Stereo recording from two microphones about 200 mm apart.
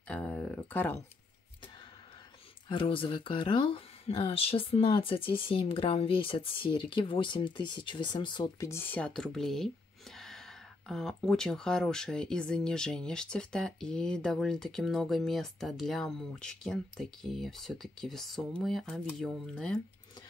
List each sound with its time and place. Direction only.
0.1 s speech: 5° left (ahead or behind)
2.7 s speech: 25° left (ahead or behind); by 9.7 s centre (ahead or behind)
10.1 s gasp: centre (ahead or behind)
10.9 s speech: centre (ahead or behind)